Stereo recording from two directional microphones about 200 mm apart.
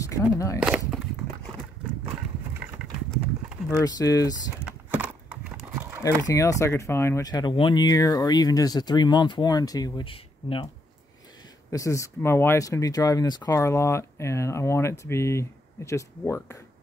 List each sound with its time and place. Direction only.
0.1 s speech: 15° left (ahead or behind)
2.8 s clip-clop: centre (ahead or behind)
3.8 s speech: 15° left (ahead or behind)
4.6 s a sound: 5° right (ahead or behind)
6.2 s speech: 15° left (ahead or behind)
11.7 s speech: 15° left (ahead or behind)